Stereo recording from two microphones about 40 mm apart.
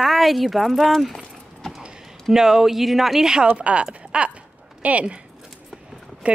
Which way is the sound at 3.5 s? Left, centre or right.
Right.